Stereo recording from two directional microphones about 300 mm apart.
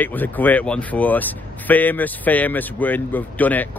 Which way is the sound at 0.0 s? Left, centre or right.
Centre.